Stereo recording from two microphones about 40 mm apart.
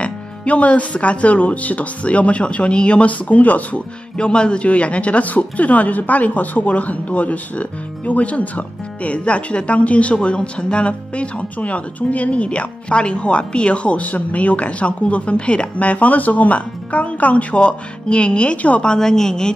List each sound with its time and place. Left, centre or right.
0.0 s a woman's voice: left
4.2 s a woman's voice: left
17.6 s speech: left
18.8 s a woman's voice: centre